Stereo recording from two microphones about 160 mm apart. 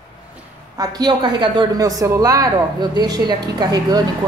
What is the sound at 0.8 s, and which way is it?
A woman's voice, 25° right (ahead or behind).